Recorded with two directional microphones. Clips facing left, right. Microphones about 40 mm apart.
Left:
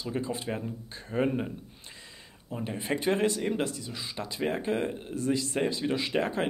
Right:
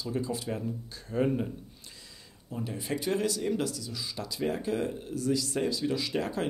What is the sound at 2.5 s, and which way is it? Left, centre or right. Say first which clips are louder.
Speech: left 2 dB; left.